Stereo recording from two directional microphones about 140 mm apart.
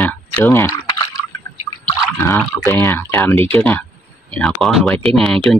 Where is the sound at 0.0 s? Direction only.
15° left (ahead or behind).